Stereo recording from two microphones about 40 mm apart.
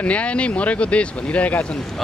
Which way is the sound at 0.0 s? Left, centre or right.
Left.